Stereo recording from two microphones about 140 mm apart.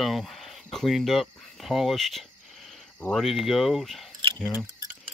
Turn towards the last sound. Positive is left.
turn(degrees=5)  # may be behind; listen again after turning